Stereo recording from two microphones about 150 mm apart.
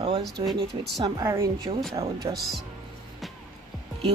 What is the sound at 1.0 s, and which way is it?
A woman's voice, 25° right (ahead or behind).